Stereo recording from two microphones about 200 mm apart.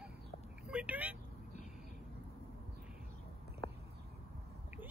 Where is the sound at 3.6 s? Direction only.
25° left (ahead or behind).